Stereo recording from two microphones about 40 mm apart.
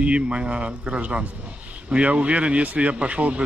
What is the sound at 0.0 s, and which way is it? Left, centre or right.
A man's voice, right.